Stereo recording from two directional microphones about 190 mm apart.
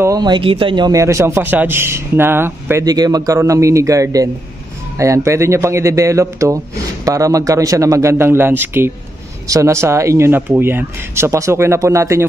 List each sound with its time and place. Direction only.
0.0 s a man's voice: 20° right (ahead or behind)